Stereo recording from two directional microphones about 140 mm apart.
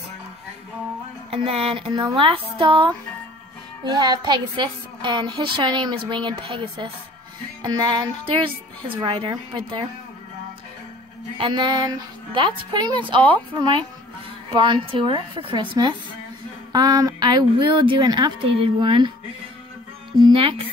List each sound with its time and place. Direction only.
1.3 s a woman's voice: 45° right (ahead or behind)
11.3 s a woman's voice: 35° right (ahead or behind)
18.5 s a woman's voice: 40° right (ahead or behind)
20.2 s a woman's voice: 35° right (ahead or behind)